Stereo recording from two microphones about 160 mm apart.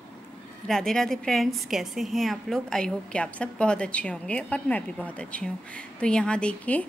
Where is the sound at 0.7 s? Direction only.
Centre (ahead or behind).